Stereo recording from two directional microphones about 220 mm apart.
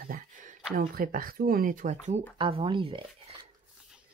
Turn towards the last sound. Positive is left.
turn(degrees=-25)  # may be behind; listen again after turning